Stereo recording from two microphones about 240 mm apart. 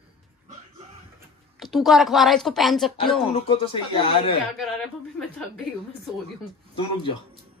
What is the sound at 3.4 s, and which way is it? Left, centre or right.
Speech, left.